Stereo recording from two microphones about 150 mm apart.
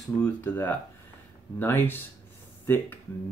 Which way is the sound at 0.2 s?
15° left (ahead or behind).